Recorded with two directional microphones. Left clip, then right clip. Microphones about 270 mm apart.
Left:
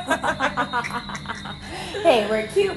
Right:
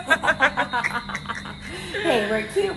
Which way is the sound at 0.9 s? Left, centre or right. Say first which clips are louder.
Right 1 dB; left.